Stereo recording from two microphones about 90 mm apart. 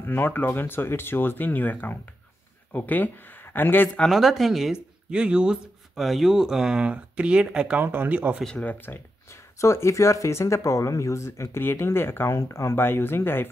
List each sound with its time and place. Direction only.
0.0 s speech: 20° left (ahead or behind)
4.0 s speech: 5° right (ahead or behind); by 8.4 s 20° right (ahead or behind)
8.5 s speech: 10° left (ahead or behind)
8.7 s speech: 25° left (ahead or behind)